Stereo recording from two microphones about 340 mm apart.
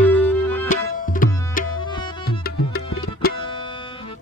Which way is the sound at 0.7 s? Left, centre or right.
Left.